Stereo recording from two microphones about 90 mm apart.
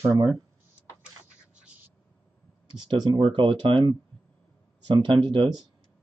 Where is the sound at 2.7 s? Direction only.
55° right (ahead or behind).